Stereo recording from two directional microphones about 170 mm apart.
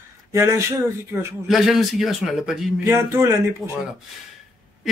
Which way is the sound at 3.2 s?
15° right (ahead or behind).